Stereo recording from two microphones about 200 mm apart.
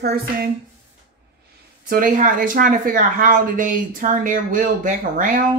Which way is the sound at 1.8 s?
40° right (ahead or behind).